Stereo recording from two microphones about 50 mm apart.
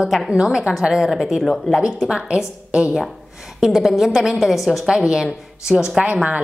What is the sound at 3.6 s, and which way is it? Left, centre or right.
A woman's voice, centre.